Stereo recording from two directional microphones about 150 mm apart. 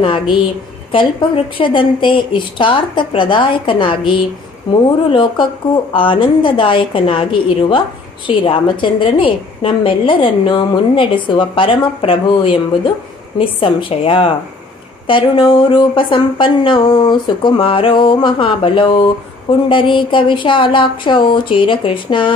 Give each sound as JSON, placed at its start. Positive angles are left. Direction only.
{"t": 0.0, "sound": "a woman's voice", "side_deg": 35}
{"t": 5.1, "sound": "a woman's voice", "side_deg": 35}